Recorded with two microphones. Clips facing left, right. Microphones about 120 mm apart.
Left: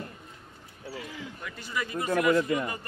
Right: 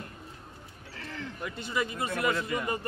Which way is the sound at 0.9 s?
10° left (ahead or behind).